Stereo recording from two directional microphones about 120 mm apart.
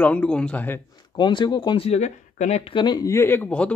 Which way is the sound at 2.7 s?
35° left (ahead or behind).